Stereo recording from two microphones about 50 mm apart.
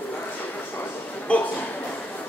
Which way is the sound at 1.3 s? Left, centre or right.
Left.